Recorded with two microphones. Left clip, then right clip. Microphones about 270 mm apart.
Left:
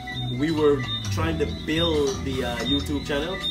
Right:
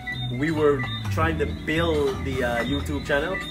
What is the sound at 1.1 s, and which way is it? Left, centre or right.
Speech, centre.